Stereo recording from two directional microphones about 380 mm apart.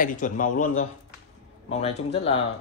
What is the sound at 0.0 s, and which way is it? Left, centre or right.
Speech, left.